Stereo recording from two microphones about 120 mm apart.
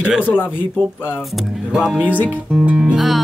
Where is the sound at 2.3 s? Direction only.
10° right (ahead or behind).